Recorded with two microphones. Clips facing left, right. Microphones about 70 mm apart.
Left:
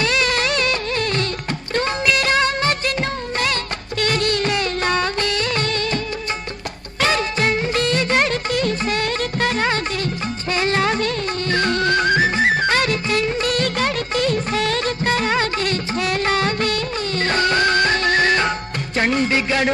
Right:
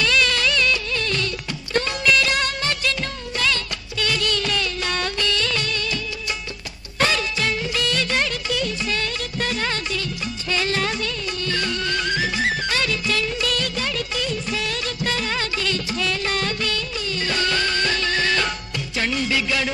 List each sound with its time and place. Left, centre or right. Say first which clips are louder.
0.0 s music: left 1 dB; left
1.8 s music of bollywood: even; left
7.1 s music: left 9 dB; left